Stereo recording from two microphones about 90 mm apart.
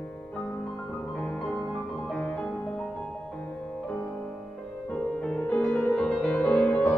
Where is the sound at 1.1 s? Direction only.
10° left (ahead or behind).